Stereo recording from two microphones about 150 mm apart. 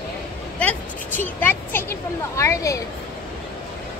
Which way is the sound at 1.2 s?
15° left (ahead or behind).